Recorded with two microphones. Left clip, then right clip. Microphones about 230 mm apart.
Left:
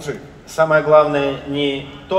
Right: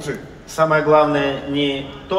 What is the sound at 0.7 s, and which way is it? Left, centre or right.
A man's voice, left.